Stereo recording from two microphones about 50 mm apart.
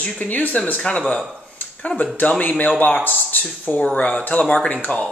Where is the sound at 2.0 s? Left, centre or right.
Left.